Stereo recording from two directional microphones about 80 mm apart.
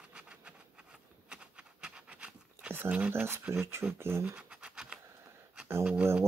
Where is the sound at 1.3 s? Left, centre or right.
Centre.